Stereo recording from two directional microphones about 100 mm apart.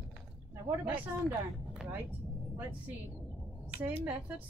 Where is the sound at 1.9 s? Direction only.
20° right (ahead or behind).